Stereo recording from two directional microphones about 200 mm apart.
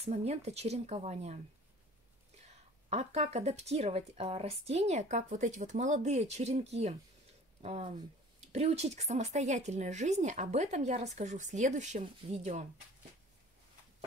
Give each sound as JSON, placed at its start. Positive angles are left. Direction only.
{"t": 0.0, "sound": "speech", "side_deg": -30}
{"t": 2.9, "sound": "speech", "side_deg": -30}